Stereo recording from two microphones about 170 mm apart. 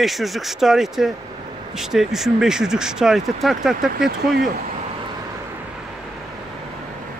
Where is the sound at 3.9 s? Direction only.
65° right (ahead or behind).